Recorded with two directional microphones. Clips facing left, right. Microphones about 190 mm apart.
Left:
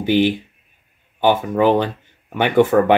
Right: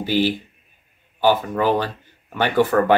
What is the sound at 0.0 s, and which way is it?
Speech, 20° left (ahead or behind).